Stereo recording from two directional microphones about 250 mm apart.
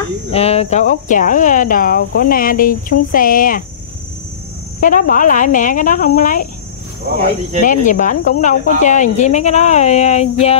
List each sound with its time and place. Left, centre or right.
0.3 s speech: left
4.7 s speech: left
7.6 s speech: left